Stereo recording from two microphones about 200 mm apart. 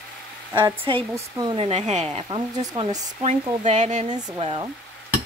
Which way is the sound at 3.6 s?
35° right (ahead or behind).